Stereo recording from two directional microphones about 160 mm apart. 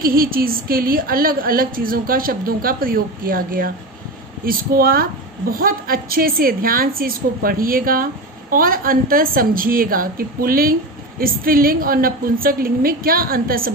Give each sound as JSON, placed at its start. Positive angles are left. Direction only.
{"t": 0.0, "sound": "a woman's voice", "side_deg": -65}